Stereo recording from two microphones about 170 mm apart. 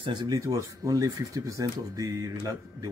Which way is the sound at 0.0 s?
25° right (ahead or behind).